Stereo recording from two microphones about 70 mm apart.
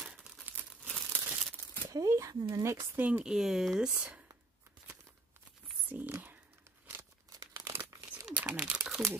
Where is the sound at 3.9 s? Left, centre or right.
Right.